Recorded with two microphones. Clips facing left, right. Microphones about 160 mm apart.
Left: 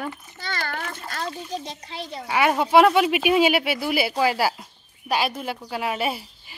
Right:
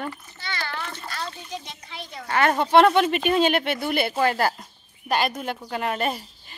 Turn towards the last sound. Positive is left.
turn(degrees=5)  # may be behind; listen again after turning